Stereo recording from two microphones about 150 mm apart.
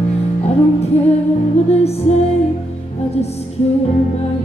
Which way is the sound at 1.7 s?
45° left (ahead or behind).